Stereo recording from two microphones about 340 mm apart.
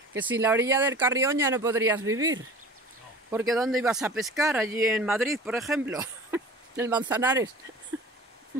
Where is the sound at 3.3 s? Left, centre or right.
Centre.